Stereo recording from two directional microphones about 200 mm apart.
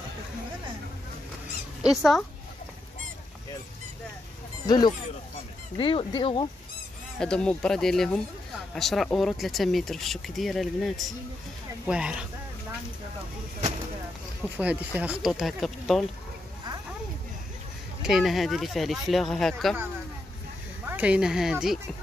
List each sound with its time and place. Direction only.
1.8 s speech: centre (ahead or behind)
4.6 s speech: 20° left (ahead or behind)
7.2 s speech: 5° left (ahead or behind)
14.6 s speech: 5° right (ahead or behind)
18.0 s speech: centre (ahead or behind)
20.8 s speech: 10° right (ahead or behind)